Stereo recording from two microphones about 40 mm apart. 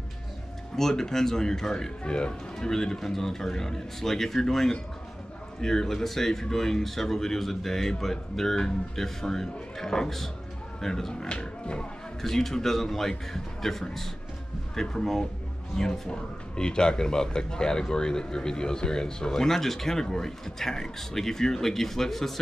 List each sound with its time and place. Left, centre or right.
0.7 s speech: centre
2.0 s speech: left
11.2 s speech: left
12.2 s speech: centre